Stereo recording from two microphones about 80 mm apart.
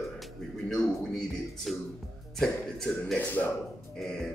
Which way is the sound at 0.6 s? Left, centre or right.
Centre.